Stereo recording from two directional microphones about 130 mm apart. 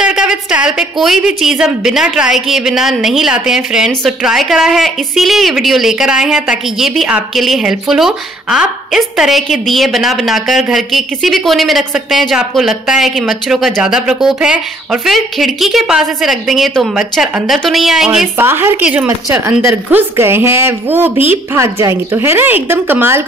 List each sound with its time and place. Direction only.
0.0 s a woman's voice: 5° right (ahead or behind)
18.4 s a woman's voice: 15° right (ahead or behind)